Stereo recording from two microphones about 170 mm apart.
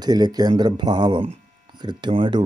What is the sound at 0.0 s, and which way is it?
Speech, 25° right (ahead or behind).